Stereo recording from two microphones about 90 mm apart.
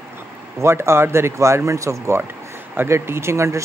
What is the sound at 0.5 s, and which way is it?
Speech, 30° right (ahead or behind).